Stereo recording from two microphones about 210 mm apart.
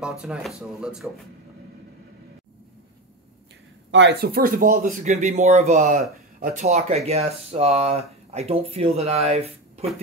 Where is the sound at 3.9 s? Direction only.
55° right (ahead or behind); by 9.9 s 30° right (ahead or behind).